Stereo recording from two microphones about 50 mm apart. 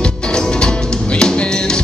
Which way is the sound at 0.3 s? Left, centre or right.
Centre.